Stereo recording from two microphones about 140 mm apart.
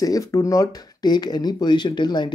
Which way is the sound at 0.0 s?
25° left (ahead or behind).